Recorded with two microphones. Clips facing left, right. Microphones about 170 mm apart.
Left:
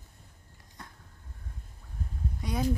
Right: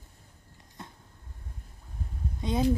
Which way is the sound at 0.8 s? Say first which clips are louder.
Right 3 dB; 25° right (ahead or behind).